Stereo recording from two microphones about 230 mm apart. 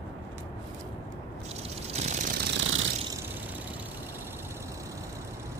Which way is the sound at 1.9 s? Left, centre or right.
Right.